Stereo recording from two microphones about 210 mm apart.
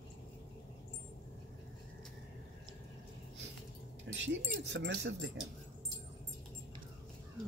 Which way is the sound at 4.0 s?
60° right (ahead or behind).